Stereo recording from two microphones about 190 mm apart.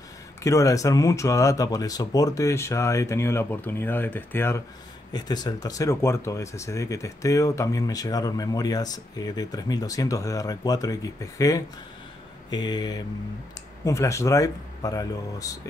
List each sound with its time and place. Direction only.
0.4 s speech: 15° left (ahead or behind)